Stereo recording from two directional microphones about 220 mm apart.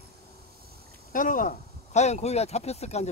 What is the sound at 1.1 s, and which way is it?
Speech, 40° left (ahead or behind).